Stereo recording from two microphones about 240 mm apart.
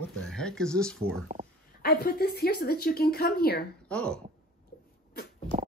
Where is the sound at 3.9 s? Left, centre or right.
Centre.